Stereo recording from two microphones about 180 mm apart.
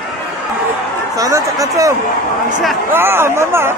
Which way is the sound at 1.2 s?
20° right (ahead or behind).